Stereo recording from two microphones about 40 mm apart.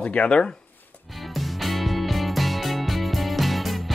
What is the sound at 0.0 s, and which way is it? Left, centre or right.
Speech, left.